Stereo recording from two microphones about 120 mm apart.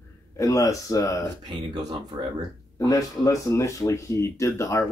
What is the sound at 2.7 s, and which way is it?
Speech, 30° left (ahead or behind).